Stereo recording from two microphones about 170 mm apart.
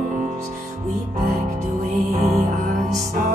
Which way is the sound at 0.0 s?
50° right (ahead or behind).